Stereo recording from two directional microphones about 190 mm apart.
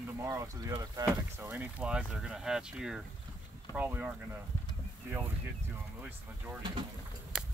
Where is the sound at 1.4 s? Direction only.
10° right (ahead or behind).